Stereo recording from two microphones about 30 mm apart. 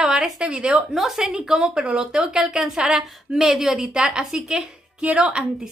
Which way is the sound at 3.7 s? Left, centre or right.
Right.